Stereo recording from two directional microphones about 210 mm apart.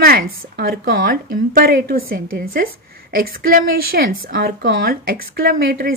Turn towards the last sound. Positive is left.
turn(degrees=-45)  # may be behind; listen again after turning